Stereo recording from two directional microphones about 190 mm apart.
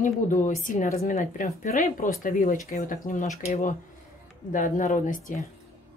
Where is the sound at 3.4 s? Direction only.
35° left (ahead or behind).